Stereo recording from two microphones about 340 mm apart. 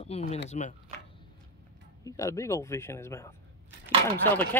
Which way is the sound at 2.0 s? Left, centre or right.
Centre.